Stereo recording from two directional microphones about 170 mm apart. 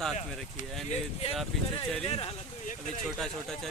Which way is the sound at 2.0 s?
35° left (ahead or behind).